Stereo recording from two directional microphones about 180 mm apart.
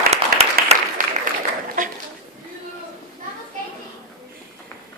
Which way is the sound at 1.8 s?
45° right (ahead or behind).